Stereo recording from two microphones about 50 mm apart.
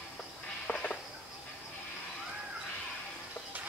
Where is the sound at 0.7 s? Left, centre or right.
Centre.